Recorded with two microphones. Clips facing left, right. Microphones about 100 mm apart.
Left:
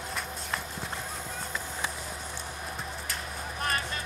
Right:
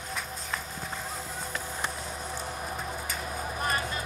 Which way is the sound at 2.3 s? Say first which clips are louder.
Right 3 dB; centre (ahead or behind).